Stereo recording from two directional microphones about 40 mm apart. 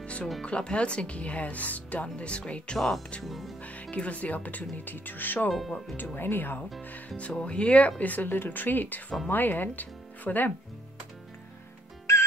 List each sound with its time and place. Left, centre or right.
0.0 s music: left
0.4 s speech: left
3.3 s speech: centre
3.6 s speech: left
5.5 s speech: centre
6.1 s speech: left
7.2 s speech: left
8.0 s speech: left